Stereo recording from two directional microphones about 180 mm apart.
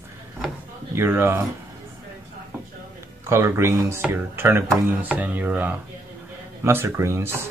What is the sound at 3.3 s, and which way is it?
Speech, 15° right (ahead or behind).